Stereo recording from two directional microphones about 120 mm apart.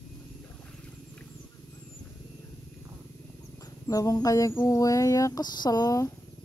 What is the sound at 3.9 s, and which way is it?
Speech, 30° left (ahead or behind).